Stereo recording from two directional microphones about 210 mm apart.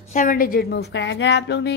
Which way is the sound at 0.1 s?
40° left (ahead or behind).